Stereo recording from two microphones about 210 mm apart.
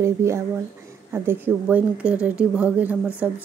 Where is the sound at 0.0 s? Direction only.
15° right (ahead or behind).